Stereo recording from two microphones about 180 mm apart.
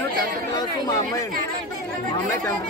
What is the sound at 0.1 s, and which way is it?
Chatter, 55° right (ahead or behind).